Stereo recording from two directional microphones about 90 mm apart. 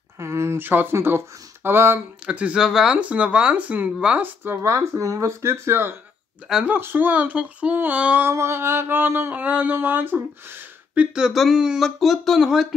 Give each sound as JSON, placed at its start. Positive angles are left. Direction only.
{"t": 0.2, "sound": "speech", "side_deg": -30}
{"t": 2.2, "sound": "speech", "side_deg": -10}
{"t": 4.5, "sound": "speech", "side_deg": -30}
{"t": 6.5, "sound": "speech", "side_deg": -15}
{"t": 8.3, "sound": "speech", "side_deg": -30}
{"t": 11.1, "sound": "speech", "side_deg": -5}